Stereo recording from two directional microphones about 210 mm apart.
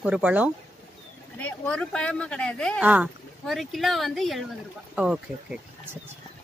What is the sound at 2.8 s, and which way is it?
Speech, 5° right (ahead or behind).